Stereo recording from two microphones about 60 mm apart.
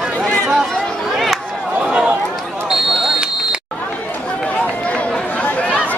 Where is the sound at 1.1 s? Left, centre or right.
Centre.